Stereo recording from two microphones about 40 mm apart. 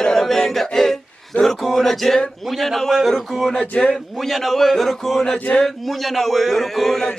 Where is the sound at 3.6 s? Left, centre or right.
Left.